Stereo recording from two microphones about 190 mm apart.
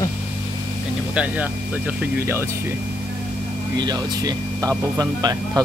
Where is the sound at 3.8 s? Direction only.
20° right (ahead or behind).